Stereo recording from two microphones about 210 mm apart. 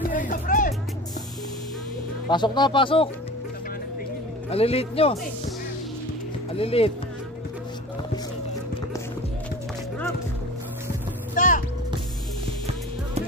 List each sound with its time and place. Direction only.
0.0 s music: 40° left (ahead or behind)
2.2 s speech: 20° left (ahead or behind)
4.5 s speech: 30° left (ahead or behind)
6.5 s speech: 25° left (ahead or behind)
11.3 s music: 40° left (ahead or behind)